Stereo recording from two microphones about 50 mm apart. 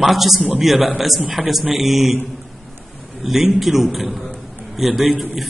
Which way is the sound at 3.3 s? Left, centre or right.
Centre.